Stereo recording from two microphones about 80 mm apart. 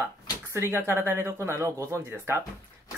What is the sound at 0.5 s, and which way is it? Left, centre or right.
Speech, right.